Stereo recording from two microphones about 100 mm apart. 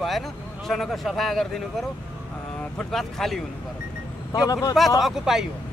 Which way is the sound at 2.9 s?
5° left (ahead or behind).